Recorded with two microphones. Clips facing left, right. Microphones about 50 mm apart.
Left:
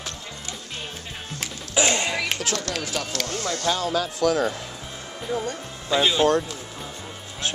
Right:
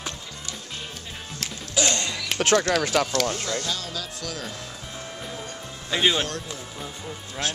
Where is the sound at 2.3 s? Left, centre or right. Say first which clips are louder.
Right 7 dB; right.